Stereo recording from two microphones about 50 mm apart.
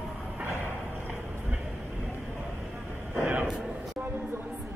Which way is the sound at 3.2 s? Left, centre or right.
Right.